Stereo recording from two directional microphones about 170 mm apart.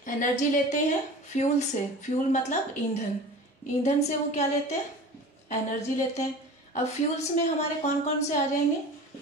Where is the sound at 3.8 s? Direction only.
40° left (ahead or behind).